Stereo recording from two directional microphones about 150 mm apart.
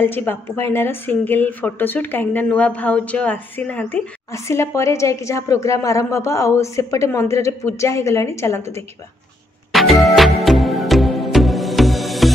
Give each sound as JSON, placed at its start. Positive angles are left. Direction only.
{"t": 0.0, "sound": "a woman's voice", "side_deg": 15}
{"t": 9.7, "sound": "music", "side_deg": 0}